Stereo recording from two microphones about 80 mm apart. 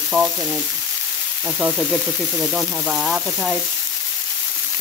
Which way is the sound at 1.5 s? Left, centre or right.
Centre.